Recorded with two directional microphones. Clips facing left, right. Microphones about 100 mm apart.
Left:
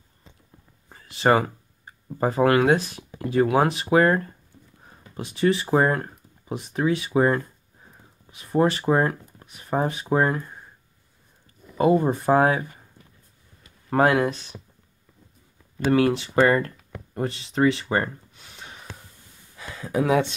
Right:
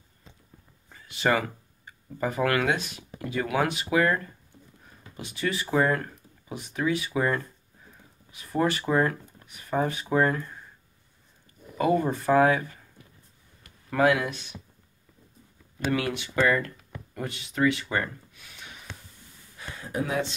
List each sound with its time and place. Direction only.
0.9 s a sound: 35° left (ahead or behind)
1.9 s speech: 35° left (ahead or behind)
11.7 s speech: 25° left (ahead or behind)
13.8 s speech: 45° left (ahead or behind)
15.9 s speech: 30° left (ahead or behind)